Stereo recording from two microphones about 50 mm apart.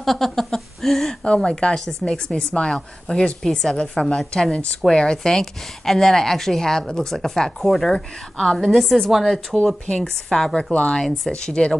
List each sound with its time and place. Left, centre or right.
0.0 s a sound: centre
1.2 s a woman's voice: centre
4.5 s a woman's voice: left; by 9.6 s centre
9.8 s a woman's voice: centre